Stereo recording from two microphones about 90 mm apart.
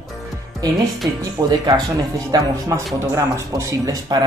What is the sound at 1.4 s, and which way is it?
Speech, 65° right (ahead or behind).